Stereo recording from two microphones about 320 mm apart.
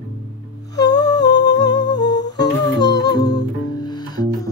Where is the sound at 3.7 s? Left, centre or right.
Centre.